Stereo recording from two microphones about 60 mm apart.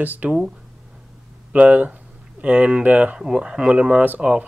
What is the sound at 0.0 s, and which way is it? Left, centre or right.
Speech, right.